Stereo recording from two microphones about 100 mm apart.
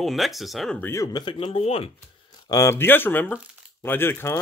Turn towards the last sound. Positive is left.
turn(degrees=20)  # may be behind; listen again after turning